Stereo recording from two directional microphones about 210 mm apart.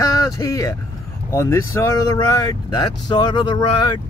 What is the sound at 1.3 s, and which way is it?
Speech, 15° left (ahead or behind).